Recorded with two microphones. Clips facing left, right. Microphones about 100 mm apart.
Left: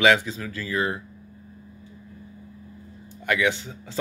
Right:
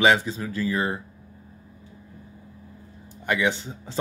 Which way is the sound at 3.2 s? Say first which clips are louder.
Even; 20° right (ahead or behind).